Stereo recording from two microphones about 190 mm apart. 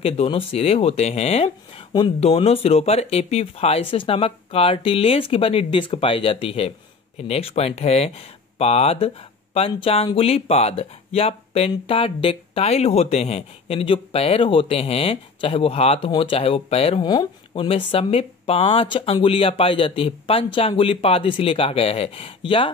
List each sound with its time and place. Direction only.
0.0 s speech: 30° left (ahead or behind)